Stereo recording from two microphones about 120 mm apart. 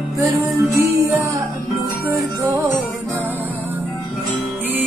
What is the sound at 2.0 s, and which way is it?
Music, 25° right (ahead or behind).